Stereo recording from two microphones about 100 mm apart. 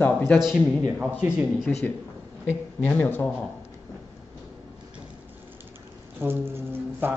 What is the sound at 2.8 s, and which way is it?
Speech, 20° left (ahead or behind).